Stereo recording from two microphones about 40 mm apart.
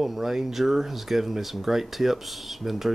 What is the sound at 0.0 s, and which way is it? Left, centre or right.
Speech, centre.